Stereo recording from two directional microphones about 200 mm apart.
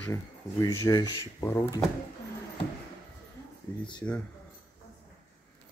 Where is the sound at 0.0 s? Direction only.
15° left (ahead or behind).